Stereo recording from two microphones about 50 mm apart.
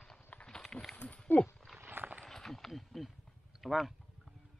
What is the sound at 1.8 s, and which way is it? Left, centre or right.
Clip-clop, right.